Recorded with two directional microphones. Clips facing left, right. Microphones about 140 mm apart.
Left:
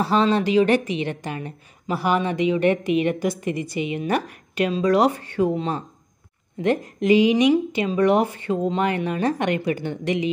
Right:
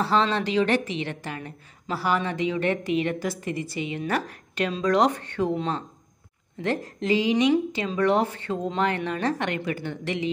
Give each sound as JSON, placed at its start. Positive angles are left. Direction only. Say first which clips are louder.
{"t": 0.0, "sound": "a woman's voice", "louder": "left 4 dB", "side_deg": 15}